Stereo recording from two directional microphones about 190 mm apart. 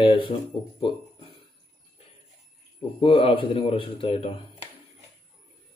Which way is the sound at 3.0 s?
30° left (ahead or behind).